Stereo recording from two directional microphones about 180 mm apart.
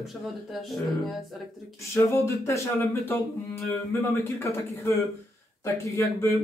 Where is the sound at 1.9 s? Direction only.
15° left (ahead or behind).